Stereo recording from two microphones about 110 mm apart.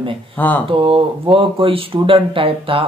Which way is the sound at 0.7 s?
50° right (ahead or behind).